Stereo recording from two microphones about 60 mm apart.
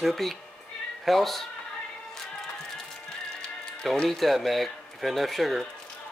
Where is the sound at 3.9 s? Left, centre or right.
Centre.